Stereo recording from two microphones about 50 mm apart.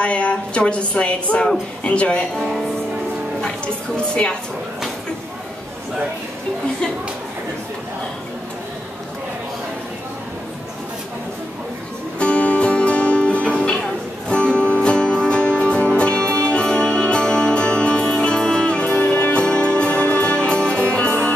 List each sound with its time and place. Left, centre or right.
0.0 s a woman's voice: left
2.3 s speech: centre
3.4 s a woman's voice: left
12.2 s music: left